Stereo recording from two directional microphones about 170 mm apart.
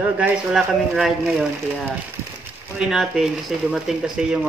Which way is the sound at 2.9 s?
Centre (ahead or behind).